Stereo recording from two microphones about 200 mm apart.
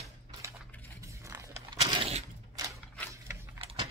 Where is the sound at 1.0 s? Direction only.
15° right (ahead or behind).